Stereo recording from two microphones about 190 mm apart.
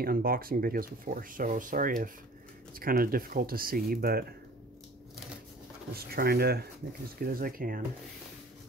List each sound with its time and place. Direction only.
0.0 s speech: 50° right (ahead or behind)
5.9 s speech: 55° right (ahead or behind)